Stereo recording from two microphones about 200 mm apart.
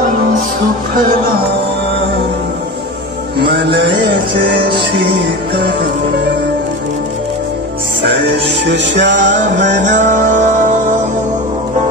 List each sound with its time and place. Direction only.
3.4 s music: 60° right (ahead or behind)
8.0 s music: 60° right (ahead or behind)
9.6 s music: 40° right (ahead or behind)